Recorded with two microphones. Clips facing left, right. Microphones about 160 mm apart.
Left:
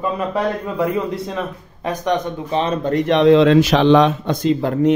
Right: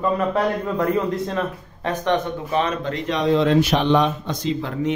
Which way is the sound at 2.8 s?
55° left (ahead or behind).